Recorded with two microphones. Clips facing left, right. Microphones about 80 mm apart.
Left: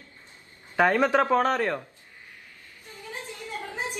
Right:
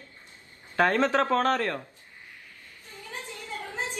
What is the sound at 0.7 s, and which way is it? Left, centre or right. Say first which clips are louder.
A man's voice: left 2 dB; centre.